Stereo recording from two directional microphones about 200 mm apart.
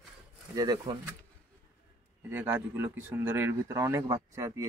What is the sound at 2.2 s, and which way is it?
Speech, 10° right (ahead or behind).